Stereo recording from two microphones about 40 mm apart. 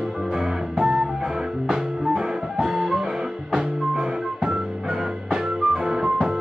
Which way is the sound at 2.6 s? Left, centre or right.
Centre.